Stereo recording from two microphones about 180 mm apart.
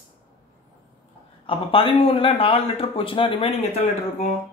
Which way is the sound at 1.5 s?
30° left (ahead or behind).